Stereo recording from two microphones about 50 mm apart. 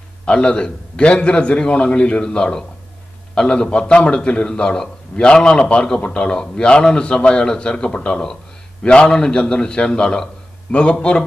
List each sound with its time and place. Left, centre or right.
0.2 s a man's voice: left